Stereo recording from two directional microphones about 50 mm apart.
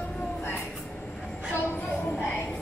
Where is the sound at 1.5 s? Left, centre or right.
Left.